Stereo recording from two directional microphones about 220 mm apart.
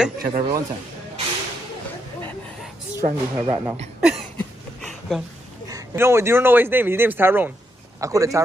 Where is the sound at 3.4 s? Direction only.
25° right (ahead or behind).